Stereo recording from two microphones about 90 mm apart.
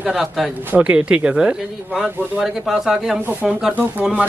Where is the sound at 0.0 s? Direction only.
5° right (ahead or behind).